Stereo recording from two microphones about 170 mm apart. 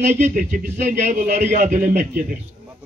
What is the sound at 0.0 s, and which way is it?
A man's voice, 45° right (ahead or behind).